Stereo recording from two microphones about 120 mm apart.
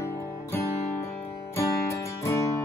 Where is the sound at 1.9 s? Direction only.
25° left (ahead or behind).